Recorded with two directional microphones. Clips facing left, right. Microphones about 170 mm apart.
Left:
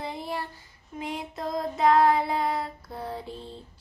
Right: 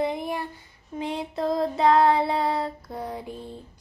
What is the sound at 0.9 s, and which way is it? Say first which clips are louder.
Child singing: right 5 dB; 30° right (ahead or behind).